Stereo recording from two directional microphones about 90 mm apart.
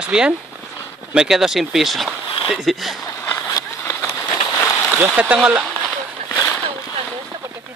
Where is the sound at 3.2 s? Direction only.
25° left (ahead or behind).